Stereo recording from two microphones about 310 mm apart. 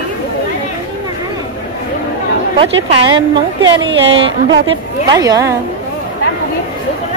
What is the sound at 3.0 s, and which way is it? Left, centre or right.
Speech, centre.